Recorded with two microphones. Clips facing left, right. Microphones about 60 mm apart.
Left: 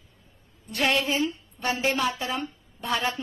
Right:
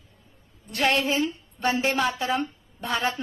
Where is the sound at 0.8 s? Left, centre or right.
Right.